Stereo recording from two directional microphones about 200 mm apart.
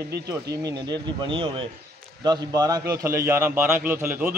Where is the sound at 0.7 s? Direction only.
20° right (ahead or behind).